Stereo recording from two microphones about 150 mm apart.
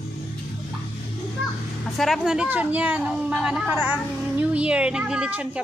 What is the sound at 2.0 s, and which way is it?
Speech, 5° right (ahead or behind).